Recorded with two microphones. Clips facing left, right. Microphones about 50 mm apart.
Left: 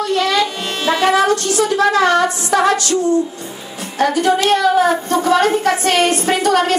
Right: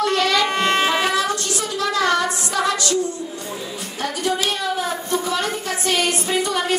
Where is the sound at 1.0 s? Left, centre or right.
Left.